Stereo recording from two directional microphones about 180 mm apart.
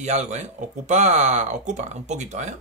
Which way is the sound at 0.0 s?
40° right (ahead or behind).